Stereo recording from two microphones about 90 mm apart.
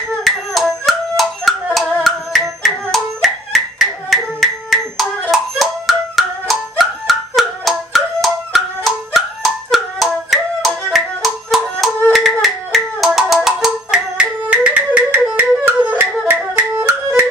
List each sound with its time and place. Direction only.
0.2 s hands: centre (ahead or behind)
13.3 s music: 5° right (ahead or behind); by 16.1 s 25° right (ahead or behind)